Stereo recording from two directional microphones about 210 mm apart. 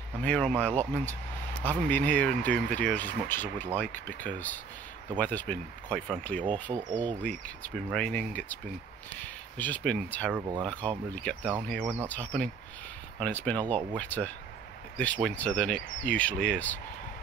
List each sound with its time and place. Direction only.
0.2 s speech: 5° left (ahead or behind)
6.7 s speech: 20° right (ahead or behind)
7.2 s speech: 5° left (ahead or behind)
10.3 s speech: 15° right (ahead or behind)
10.6 s speech: 5° left (ahead or behind)